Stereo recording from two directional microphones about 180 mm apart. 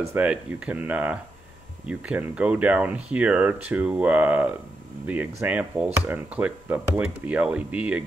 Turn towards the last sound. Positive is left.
turn(degrees=-5)  # may be behind; listen again after turning